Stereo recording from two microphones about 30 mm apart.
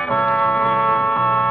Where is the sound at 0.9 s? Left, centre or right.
Left.